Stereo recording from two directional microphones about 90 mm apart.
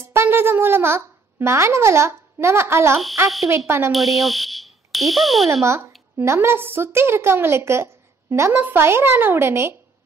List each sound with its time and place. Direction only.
0.0 s a child's voice: 30° right (ahead or behind)
3.9 s speech: centre (ahead or behind)
5.5 s a woman's voice: 30° right (ahead or behind)